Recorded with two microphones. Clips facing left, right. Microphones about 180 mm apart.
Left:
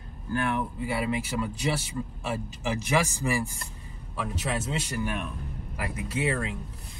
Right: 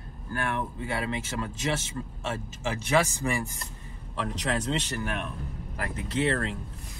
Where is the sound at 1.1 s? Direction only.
10° left (ahead or behind).